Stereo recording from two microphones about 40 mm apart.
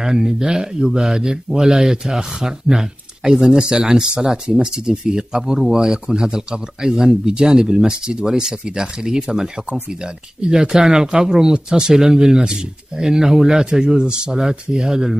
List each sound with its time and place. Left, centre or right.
0.0 s speech: centre